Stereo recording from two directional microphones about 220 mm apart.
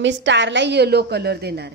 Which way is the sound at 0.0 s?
55° right (ahead or behind).